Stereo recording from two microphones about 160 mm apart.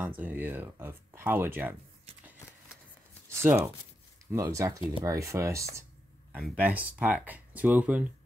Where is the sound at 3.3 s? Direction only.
15° right (ahead or behind).